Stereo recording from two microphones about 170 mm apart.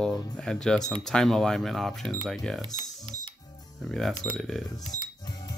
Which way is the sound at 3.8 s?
Centre (ahead or behind).